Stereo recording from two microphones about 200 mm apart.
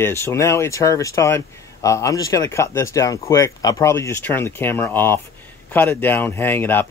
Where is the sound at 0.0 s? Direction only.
15° left (ahead or behind).